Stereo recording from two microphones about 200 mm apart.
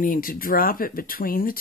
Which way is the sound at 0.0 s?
45° left (ahead or behind).